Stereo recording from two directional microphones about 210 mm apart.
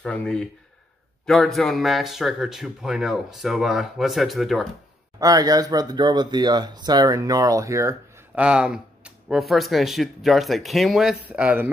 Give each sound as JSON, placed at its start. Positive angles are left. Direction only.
{"t": 0.0, "sound": "a man's voice", "side_deg": 5}
{"t": 5.2, "sound": "a man's voice", "side_deg": -15}